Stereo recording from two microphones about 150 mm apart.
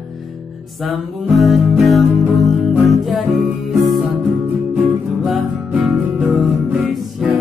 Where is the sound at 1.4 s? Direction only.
Centre (ahead or behind).